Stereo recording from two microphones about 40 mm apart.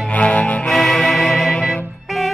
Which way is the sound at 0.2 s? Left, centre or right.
Left.